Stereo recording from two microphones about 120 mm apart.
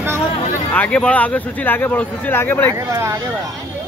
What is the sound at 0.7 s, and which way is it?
Speech, 10° left (ahead or behind).